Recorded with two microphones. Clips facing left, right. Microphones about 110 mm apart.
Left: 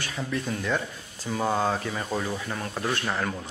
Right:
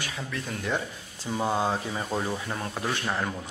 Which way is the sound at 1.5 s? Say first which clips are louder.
Left 1 dB; 10° right (ahead or behind).